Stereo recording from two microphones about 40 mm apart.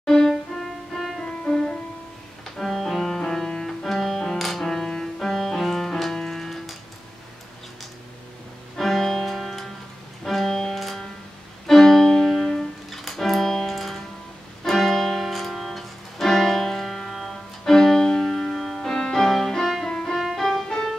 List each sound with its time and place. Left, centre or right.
0.0 s music: centre
1.2 s music: centre
2.4 s music: centre
8.7 s music: centre
10.8 s music: centre
18.8 s music: centre
20.2 s music: centre